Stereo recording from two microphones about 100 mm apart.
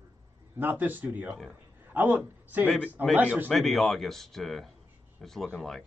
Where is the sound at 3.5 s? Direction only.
Centre (ahead or behind).